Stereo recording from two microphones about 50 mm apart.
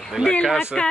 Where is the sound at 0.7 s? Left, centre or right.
Centre.